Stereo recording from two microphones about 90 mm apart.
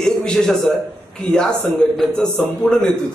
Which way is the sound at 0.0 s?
10° left (ahead or behind).